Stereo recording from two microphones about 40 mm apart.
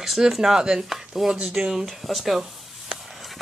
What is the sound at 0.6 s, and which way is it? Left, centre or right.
Chopping, centre.